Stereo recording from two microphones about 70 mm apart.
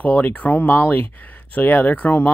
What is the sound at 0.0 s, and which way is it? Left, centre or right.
Speech, left.